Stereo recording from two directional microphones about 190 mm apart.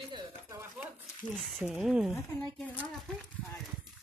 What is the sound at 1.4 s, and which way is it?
Speech, 5° right (ahead or behind).